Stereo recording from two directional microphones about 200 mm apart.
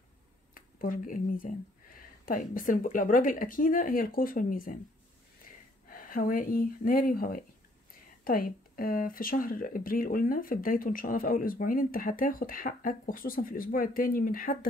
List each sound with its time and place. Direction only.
0.6 s speech: 45° left (ahead or behind)
5.9 s speech: 45° left (ahead or behind)